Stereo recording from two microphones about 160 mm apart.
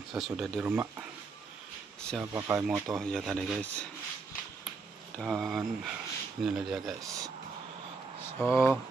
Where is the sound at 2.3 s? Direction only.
15° right (ahead or behind).